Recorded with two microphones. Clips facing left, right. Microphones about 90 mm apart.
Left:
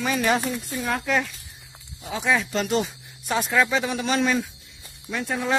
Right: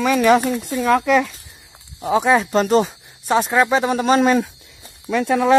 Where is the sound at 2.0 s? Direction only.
45° right (ahead or behind).